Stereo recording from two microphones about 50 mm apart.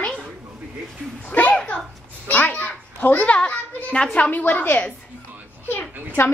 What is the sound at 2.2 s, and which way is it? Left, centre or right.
A child's voice, left.